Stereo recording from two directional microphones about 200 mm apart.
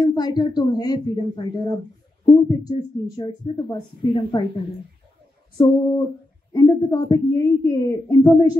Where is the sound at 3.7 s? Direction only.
25° left (ahead or behind).